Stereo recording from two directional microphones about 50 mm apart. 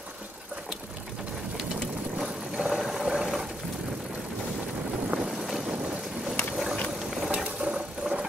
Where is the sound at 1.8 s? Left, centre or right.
Centre.